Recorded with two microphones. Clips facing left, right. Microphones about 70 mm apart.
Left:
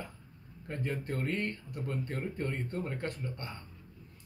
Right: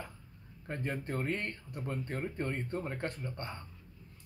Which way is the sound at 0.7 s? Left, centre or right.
Right.